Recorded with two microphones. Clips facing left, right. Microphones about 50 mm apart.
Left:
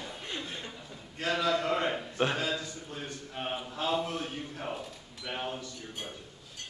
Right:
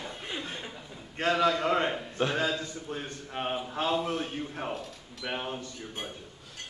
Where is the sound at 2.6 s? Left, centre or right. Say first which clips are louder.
Right 4 dB; right.